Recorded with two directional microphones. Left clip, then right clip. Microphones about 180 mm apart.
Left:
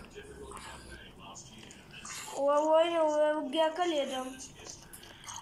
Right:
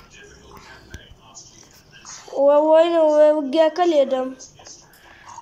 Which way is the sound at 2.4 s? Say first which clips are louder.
Right 12 dB; 65° right (ahead or behind).